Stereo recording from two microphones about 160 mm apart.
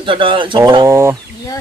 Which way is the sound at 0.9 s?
15° right (ahead or behind).